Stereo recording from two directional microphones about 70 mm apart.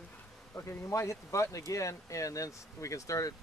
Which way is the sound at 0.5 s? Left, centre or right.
Left.